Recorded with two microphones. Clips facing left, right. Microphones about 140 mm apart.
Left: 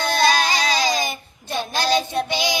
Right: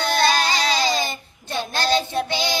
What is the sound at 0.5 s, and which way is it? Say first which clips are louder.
Child singing: even; 10° left (ahead or behind).